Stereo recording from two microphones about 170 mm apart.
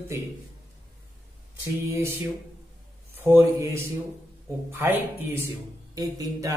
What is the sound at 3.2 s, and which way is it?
A man's voice, 15° right (ahead or behind).